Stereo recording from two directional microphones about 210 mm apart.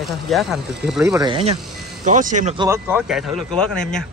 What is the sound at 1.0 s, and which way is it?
Speech, 15° right (ahead or behind).